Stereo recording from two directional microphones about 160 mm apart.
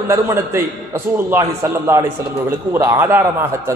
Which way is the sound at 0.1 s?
20° right (ahead or behind).